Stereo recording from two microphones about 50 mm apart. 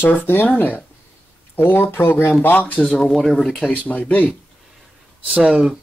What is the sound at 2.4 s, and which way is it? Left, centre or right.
Speech, left.